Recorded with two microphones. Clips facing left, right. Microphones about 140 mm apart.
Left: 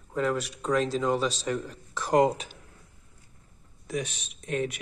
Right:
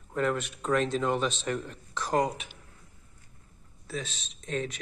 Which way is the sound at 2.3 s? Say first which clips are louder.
Left 6 dB; 40° left (ahead or behind).